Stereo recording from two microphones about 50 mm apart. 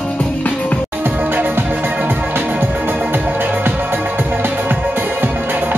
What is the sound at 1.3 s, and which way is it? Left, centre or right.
Music, right.